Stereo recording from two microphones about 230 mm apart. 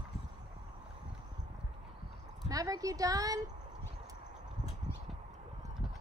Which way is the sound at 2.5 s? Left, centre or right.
Centre.